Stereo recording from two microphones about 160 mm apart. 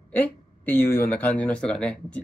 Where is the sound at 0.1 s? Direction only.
10° left (ahead or behind).